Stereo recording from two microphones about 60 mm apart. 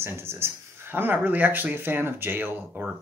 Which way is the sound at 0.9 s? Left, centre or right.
Right.